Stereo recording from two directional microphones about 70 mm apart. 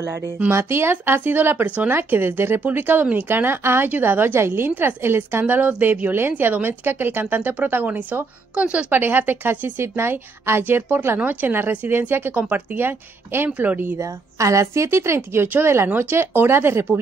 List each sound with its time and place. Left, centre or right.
0.0 s a woman's voice: right
5.4 s a woman's voice: right
13.5 s a woman's voice: right
13.9 s a woman's voice: right